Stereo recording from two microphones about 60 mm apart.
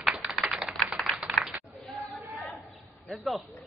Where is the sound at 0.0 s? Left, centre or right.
Centre.